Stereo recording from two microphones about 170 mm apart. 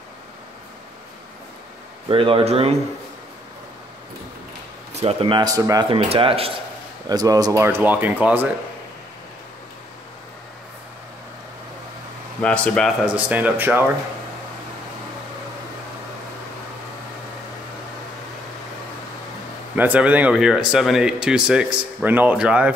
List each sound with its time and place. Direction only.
2.0 s speech: 30° right (ahead or behind)
5.0 s speech: 30° right (ahead or behind)
5.9 s speech: 30° right (ahead or behind)
7.1 s speech: 20° right (ahead or behind)
12.4 s speech: 5° left (ahead or behind)
13.0 s speech: 10° right (ahead or behind)
19.7 s speech: 10° right (ahead or behind)